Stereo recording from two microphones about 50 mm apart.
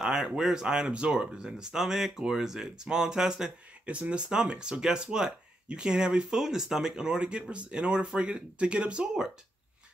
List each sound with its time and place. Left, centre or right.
0.0 s speech: centre